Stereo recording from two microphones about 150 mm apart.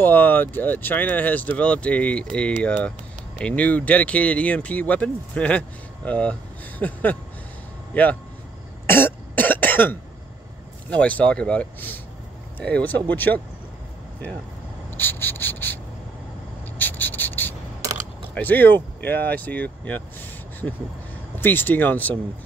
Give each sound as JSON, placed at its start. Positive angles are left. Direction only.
{"t": 0.0, "sound": "speech", "side_deg": 10}
{"t": 6.8, "sound": "a sound", "side_deg": 10}
{"t": 7.9, "sound": "speech", "side_deg": 10}
{"t": 8.8, "sound": "cough", "side_deg": 15}
{"t": 10.9, "sound": "speech", "side_deg": 10}
{"t": 15.0, "sound": "rub", "side_deg": 15}
{"t": 18.3, "sound": "speech", "side_deg": 10}